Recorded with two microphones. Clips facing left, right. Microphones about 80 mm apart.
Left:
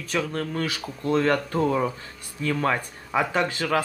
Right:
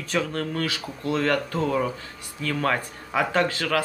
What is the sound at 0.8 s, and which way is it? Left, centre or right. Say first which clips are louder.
Speech: left 6 dB; centre.